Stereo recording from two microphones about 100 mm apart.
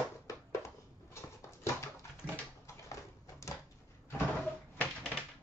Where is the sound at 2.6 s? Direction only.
30° left (ahead or behind).